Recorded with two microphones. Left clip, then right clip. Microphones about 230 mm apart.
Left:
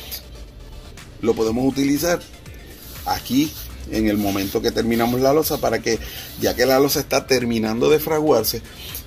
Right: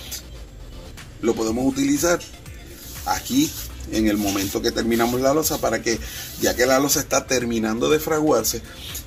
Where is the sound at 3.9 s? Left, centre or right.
Left.